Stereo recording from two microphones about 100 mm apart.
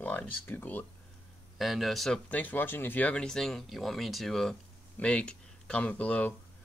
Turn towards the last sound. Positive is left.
turn(degrees=15)  # may be behind; listen again after turning